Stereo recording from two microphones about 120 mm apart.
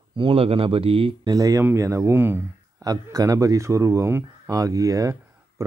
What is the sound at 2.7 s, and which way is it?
Speech, 30° right (ahead or behind).